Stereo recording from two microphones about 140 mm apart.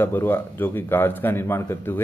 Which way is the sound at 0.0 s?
15° left (ahead or behind).